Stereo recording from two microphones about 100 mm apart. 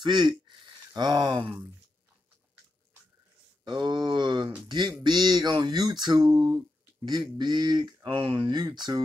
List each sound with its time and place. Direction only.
0.0 s speech: 45° right (ahead or behind)
3.6 s a sound: 50° right (ahead or behind)
4.6 s speech: 45° right (ahead or behind)